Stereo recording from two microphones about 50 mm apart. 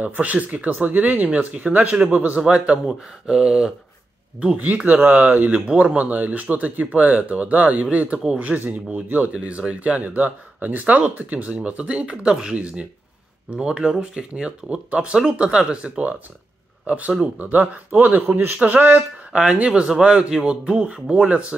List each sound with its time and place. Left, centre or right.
0.0 s speech: right
2.9 s speech: centre
5.0 s speech: right